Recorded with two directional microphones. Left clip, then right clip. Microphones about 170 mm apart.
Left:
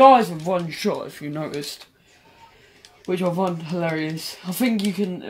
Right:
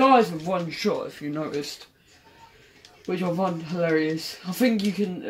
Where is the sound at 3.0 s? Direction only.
55° left (ahead or behind).